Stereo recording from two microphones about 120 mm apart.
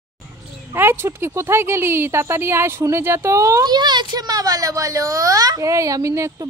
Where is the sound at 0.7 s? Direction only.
20° right (ahead or behind).